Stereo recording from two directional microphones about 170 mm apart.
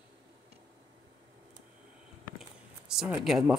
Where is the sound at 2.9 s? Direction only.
5° right (ahead or behind).